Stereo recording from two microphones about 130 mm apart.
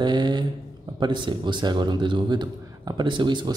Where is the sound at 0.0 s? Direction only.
35° right (ahead or behind).